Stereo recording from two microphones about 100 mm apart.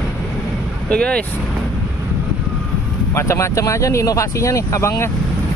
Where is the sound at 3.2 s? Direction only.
30° left (ahead or behind).